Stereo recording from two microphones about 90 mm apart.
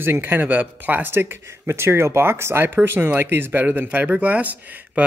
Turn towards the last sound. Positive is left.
turn(degrees=-15)  # may be behind; listen again after turning